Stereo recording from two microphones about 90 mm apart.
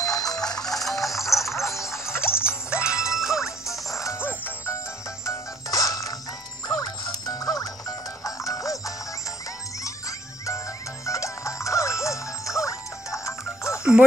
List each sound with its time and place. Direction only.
0.1 s music: 5° left (ahead or behind)
3.9 s music: 35° left (ahead or behind)
4.2 s music: 25° left (ahead or behind)
5.2 s music: 35° left (ahead or behind)
11.1 s music: 35° left (ahead or behind)